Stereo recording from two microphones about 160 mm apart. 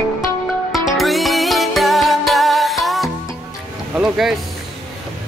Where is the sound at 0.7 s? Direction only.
Centre (ahead or behind).